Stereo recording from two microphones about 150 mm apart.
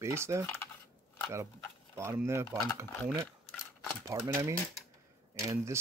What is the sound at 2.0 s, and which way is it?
Speech, 15° right (ahead or behind).